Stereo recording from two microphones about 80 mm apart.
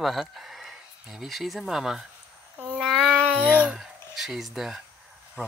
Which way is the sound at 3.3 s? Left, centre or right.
Centre.